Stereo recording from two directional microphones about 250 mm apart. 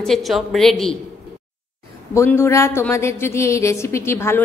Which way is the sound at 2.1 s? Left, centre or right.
Centre.